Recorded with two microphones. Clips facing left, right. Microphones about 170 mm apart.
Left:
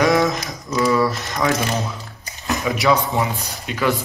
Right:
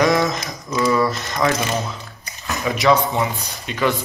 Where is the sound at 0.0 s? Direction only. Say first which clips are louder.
Left 1 dB; 5° left (ahead or behind).